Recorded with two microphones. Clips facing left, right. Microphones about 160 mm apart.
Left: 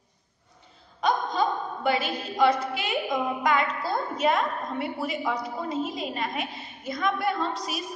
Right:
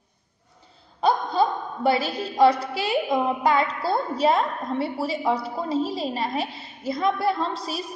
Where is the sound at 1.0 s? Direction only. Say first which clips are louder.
Right 3 dB; 35° right (ahead or behind).